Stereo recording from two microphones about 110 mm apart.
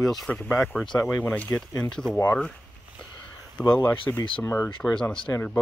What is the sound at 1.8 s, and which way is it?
Speech, 5° left (ahead or behind).